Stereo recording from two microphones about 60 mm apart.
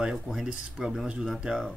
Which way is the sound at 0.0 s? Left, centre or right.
Centre.